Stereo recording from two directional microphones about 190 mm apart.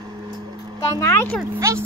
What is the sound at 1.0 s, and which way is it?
Speech, 15° left (ahead or behind).